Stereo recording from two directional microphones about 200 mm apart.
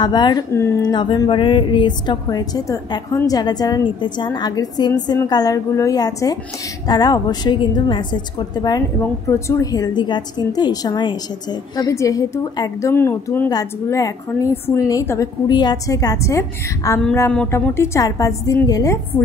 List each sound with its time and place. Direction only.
0.0 s a woman's voice: 20° left (ahead or behind)